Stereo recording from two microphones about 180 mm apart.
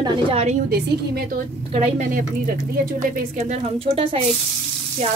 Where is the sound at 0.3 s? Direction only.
35° right (ahead or behind).